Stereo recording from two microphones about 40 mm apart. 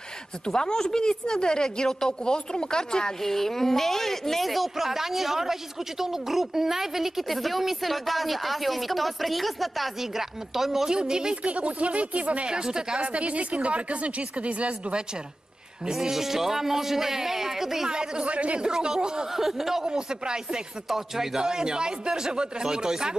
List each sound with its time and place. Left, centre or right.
0.5 s a woman's voice: centre
3.2 s speech: centre
11.0 s speech: centre
11.4 s speech: right
12.4 s speech: centre
13.0 s speech: right
15.9 s speech: centre
17.8 s speech: centre
18.2 s speech: right
18.6 s speech: centre
19.9 s speech: right
20.9 s speech: centre
21.4 s speech: centre